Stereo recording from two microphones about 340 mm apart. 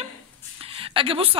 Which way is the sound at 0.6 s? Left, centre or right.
Centre.